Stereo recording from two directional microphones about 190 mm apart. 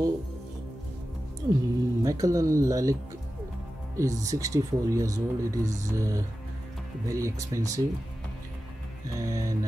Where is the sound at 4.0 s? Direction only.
15° right (ahead or behind).